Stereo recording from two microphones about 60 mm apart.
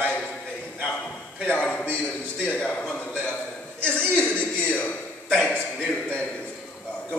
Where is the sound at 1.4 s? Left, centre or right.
Centre.